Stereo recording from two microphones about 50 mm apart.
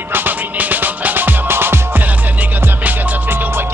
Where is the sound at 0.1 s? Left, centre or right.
Right.